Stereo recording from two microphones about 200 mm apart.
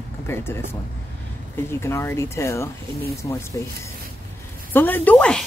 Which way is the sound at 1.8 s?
15° left (ahead or behind).